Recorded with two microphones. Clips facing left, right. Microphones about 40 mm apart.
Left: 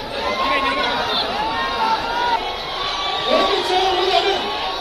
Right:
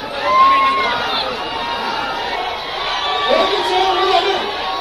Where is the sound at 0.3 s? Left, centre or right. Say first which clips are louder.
Right 9 dB; right.